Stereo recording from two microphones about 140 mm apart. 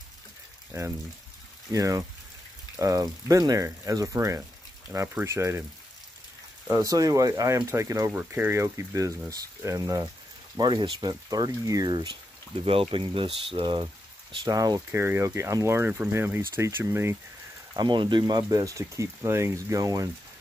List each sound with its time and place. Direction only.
0.7 s speech: 20° right (ahead or behind)
6.7 s speech: 25° right (ahead or behind)
14.3 s speech: 25° right (ahead or behind)
17.7 s speech: 35° right (ahead or behind)